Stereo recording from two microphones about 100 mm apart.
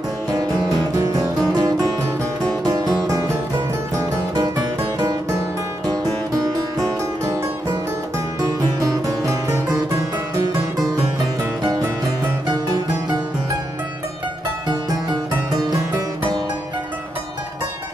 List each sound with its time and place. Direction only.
1.5 s music: 40° right (ahead or behind)
5.9 s music: 35° right (ahead or behind)
8.4 s music: 35° right (ahead or behind)
12.4 s music: 40° right (ahead or behind)
14.7 s music: 40° right (ahead or behind)